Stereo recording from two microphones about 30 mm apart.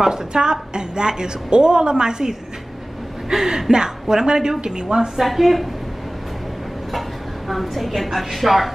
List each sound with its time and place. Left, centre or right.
0.1 s a woman's voice: right
3.3 s a woman's voice: centre
5.2 s speech: centre
6.9 s speech: centre